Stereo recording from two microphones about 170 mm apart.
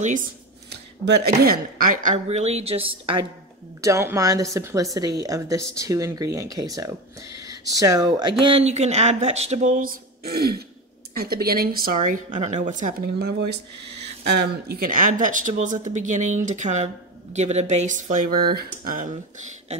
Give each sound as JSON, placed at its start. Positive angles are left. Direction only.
{"t": 0.7, "sound": "speech", "side_deg": -75}
{"t": 3.8, "sound": "a woman's voice", "side_deg": -15}
{"t": 13.2, "sound": "speech", "side_deg": -75}
{"t": 14.4, "sound": "speech", "side_deg": -65}